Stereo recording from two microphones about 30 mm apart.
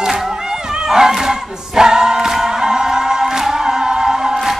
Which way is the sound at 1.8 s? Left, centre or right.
Right.